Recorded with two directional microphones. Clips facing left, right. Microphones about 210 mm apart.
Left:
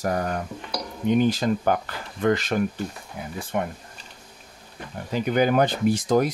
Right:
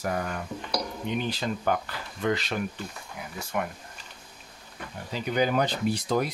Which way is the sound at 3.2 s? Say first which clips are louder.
Left 4 dB; 30° left (ahead or behind).